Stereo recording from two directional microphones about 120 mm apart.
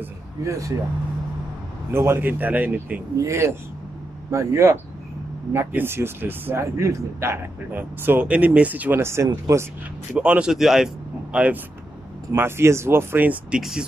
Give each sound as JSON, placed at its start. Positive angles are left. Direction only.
{"t": 0.4, "sound": "speech", "side_deg": -25}
{"t": 1.9, "sound": "speech", "side_deg": -20}
{"t": 3.2, "sound": "speech", "side_deg": -25}
{"t": 10.1, "sound": "a man's voice", "side_deg": -10}